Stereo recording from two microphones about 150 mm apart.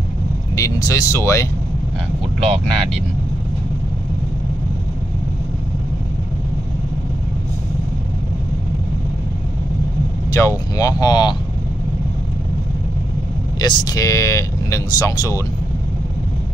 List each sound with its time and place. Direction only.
0.6 s speech: 20° left (ahead or behind)
2.4 s speech: 40° right (ahead or behind)
10.8 s speech: 25° left (ahead or behind)
13.6 s speech: 25° left (ahead or behind)